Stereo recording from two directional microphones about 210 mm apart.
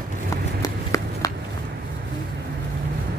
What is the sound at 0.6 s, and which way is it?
Run, 15° left (ahead or behind).